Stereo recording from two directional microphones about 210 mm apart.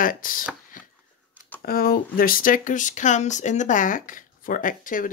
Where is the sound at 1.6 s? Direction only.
45° left (ahead or behind).